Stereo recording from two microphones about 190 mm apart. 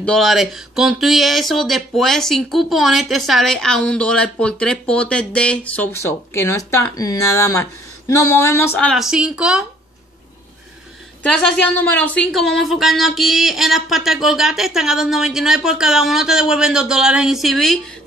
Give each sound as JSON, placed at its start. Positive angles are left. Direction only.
{"t": 0.0, "sound": "speech", "side_deg": 0}
{"t": 11.2, "sound": "speech", "side_deg": 5}